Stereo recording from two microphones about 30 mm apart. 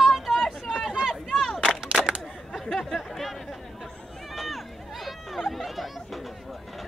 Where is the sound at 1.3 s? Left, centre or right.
Centre.